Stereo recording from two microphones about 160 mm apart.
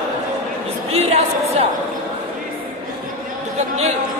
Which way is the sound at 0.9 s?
40° right (ahead or behind).